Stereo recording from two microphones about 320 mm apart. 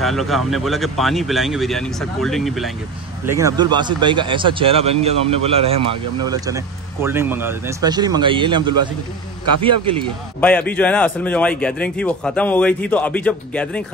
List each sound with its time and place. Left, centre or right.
0.0 s a man's voice: centre
10.4 s a man's voice: centre